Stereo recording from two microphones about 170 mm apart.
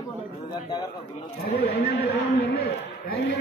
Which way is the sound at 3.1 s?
75° left (ahead or behind).